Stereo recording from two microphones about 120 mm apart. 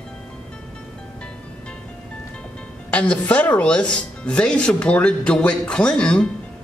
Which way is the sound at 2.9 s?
10° left (ahead or behind).